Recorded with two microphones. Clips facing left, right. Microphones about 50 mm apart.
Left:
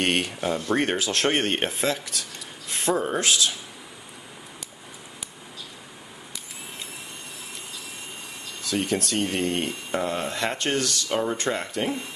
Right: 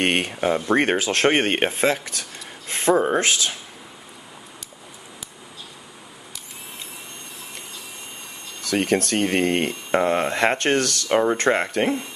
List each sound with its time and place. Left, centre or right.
0.0 s speech: right
0.7 s speech: right
2.9 s speech: right
3.2 s speech: right
8.6 s speech: right